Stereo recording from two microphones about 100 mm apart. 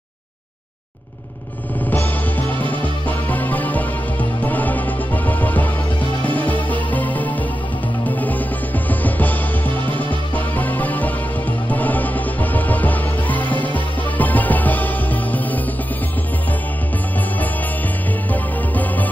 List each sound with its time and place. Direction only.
1.9 s music: 15° left (ahead or behind)
18.3 s music: 15° left (ahead or behind)